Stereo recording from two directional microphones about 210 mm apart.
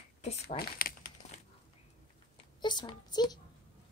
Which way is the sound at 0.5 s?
45° left (ahead or behind).